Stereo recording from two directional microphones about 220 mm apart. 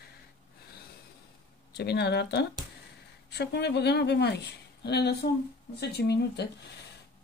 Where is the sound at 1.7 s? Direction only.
50° left (ahead or behind).